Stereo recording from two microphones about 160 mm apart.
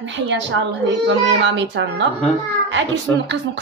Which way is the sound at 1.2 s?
90° right.